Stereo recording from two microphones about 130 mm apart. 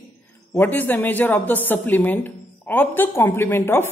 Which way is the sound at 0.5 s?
15° left (ahead or behind).